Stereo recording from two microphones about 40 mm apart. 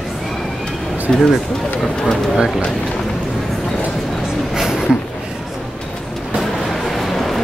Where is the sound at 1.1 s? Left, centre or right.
Centre.